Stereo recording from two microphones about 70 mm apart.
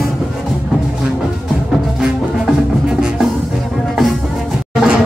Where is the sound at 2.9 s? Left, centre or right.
Centre.